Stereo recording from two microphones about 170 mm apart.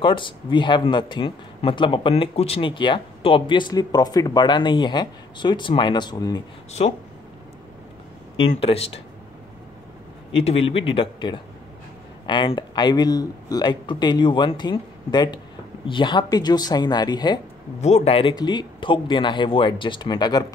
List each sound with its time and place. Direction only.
0.0 s speech: 30° left (ahead or behind)
8.4 s speech: 35° left (ahead or behind)
10.3 s speech: 35° left (ahead or behind)
17.7 s speech: 40° left (ahead or behind); by 20.4 s 25° left (ahead or behind)